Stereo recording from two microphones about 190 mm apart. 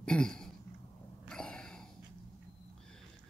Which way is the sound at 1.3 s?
5° left (ahead or behind).